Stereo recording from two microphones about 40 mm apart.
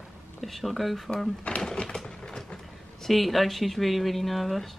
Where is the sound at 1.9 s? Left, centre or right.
Centre.